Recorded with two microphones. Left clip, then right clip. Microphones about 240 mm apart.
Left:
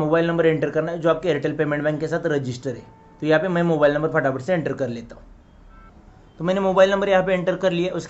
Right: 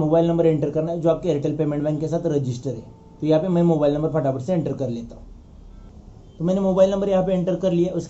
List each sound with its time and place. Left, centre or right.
0.0 s a man's voice: left
6.4 s a man's voice: left